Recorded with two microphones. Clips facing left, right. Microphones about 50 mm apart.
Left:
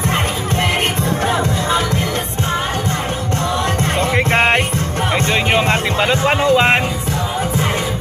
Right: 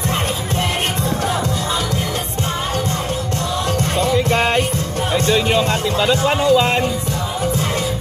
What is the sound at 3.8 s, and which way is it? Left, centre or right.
Music, left.